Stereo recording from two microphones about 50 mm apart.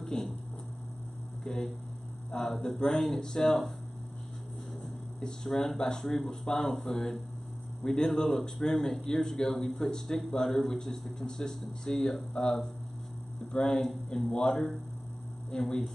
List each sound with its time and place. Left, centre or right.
0.0 s hum: centre
1.4 s speech: centre
5.2 s speech: centre
13.8 s a man's voice: centre
14.3 s speech: centre